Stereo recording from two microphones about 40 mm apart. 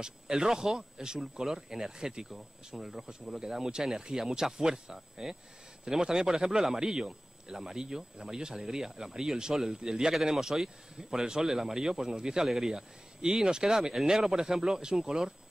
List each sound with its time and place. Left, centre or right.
0.0 s a man's voice: centre